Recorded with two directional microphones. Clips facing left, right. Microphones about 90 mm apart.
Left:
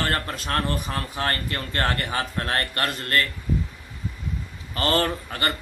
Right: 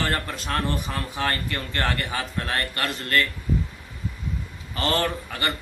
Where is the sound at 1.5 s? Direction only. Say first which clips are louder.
Left 1 dB; 40° left (ahead or behind).